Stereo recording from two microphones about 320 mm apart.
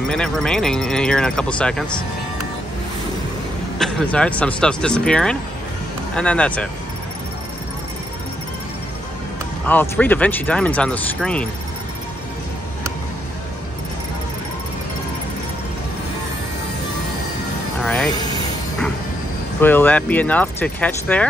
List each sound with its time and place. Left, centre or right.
0.1 s speech: centre
3.7 s speech: centre
9.7 s speech: centre
17.8 s vehicle: centre
19.6 s speech: centre